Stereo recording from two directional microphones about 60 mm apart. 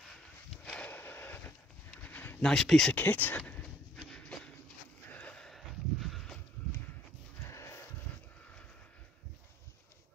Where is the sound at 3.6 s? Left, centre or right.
Centre.